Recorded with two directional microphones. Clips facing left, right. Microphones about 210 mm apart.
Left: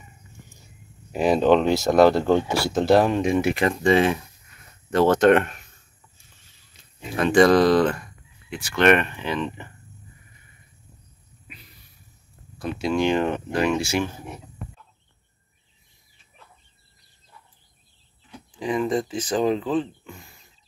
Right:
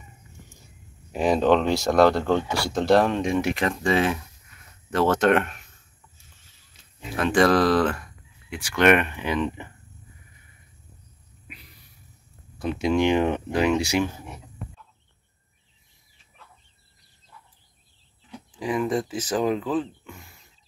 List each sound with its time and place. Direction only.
1.1 s speech: 5° left (ahead or behind)
7.2 s speech: centre (ahead or behind)
12.5 s speech: 20° right (ahead or behind)
18.6 s speech: 5° right (ahead or behind)